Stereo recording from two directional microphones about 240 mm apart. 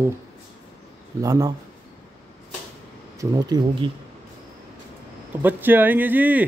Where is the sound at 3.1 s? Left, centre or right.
Centre.